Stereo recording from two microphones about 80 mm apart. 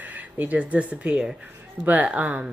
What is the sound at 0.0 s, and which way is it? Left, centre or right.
Speech, right.